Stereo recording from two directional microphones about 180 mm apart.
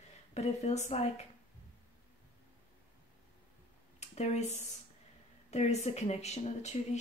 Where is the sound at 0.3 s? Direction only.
40° left (ahead or behind).